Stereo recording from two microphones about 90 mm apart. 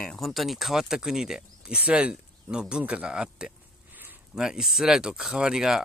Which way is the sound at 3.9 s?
20° right (ahead or behind).